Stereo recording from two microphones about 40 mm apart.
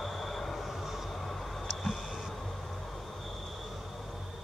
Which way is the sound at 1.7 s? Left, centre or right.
Centre.